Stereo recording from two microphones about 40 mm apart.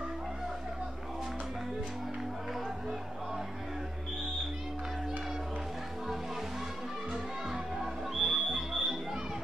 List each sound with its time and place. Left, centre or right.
7.1 s music: centre
7.8 s music: centre